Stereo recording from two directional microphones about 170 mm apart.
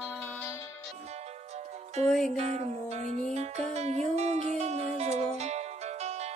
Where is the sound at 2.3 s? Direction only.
40° right (ahead or behind).